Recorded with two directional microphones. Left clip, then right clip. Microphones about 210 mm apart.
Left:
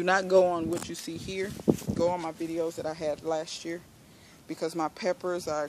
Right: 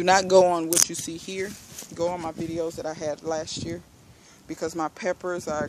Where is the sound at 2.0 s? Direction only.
5° right (ahead or behind).